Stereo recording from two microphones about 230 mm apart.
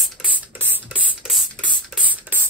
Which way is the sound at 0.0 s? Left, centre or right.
Centre.